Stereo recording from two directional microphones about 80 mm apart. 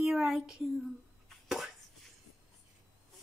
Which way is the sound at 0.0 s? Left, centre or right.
Centre.